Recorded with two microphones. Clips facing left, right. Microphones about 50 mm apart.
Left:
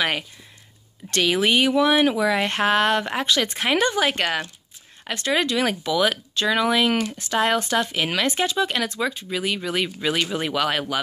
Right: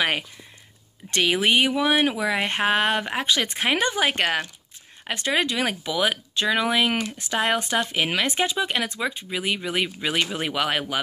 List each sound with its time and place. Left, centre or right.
1.1 s speech: right